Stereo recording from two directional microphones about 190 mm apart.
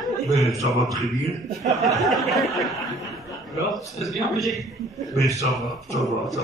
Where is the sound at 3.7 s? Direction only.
Centre (ahead or behind).